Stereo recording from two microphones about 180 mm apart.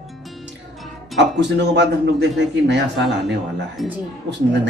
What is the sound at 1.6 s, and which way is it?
A man's voice, 70° right (ahead or behind).